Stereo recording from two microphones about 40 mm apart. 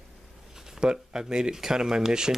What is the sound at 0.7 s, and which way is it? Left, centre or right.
Speech, centre.